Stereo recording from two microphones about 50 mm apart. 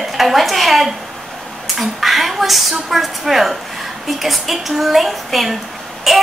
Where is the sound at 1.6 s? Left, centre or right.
Centre.